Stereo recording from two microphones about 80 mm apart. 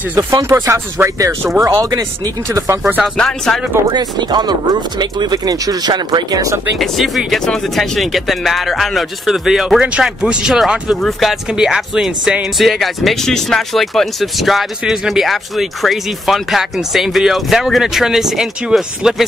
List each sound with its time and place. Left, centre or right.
0.3 s speech: right
3.2 s speech: centre
3.9 s speech: right
6.8 s speech: centre